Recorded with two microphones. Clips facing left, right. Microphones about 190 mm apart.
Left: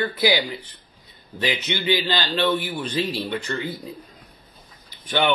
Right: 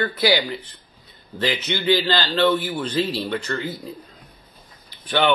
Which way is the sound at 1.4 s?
10° left (ahead or behind).